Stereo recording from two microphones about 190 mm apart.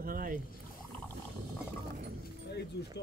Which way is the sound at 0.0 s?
50° right (ahead or behind).